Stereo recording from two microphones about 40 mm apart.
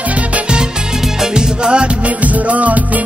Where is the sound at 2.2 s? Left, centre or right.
Right.